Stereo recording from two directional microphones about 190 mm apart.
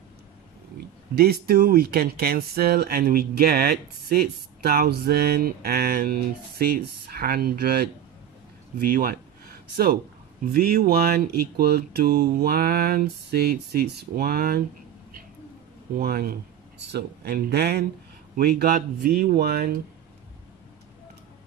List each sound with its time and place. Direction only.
1.1 s speech: 55° right (ahead or behind)
15.9 s speech: 50° right (ahead or behind)